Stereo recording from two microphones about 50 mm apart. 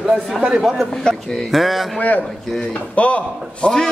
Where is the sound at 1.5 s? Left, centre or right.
Centre.